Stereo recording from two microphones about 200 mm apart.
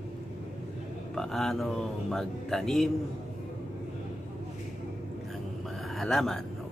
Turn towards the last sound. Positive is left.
turn(degrees=0)  # may be behind; listen again after turning